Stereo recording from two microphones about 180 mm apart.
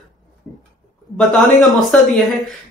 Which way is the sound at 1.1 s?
Centre (ahead or behind).